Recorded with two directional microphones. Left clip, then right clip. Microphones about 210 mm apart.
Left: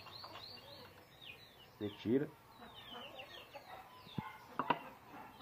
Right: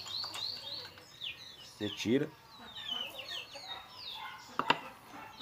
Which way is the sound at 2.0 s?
50° right (ahead or behind).